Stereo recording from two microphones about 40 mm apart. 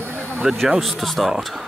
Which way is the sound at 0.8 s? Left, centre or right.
Centre.